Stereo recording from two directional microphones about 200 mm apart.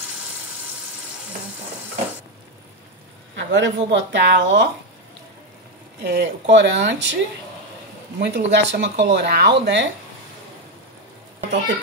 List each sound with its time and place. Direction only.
3.3 s speech: 65° right (ahead or behind)
6.0 s speech: 60° right (ahead or behind)
8.2 s speech: 60° right (ahead or behind)